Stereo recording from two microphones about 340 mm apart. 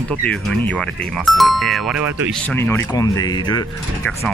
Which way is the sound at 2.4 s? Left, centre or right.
Centre.